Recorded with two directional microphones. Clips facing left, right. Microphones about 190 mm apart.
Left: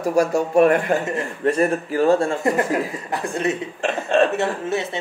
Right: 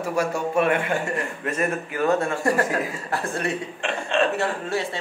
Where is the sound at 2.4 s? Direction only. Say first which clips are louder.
Left 2 dB; 20° left (ahead or behind).